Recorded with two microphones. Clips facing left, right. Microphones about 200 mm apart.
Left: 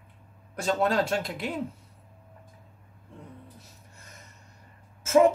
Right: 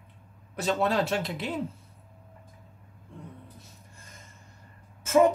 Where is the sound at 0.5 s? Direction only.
45° left (ahead or behind).